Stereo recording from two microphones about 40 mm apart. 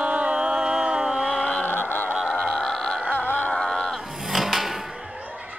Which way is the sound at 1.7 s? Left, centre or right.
Left.